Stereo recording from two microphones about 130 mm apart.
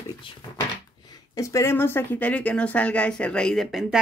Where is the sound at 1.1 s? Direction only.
25° left (ahead or behind); by 4.0 s centre (ahead or behind).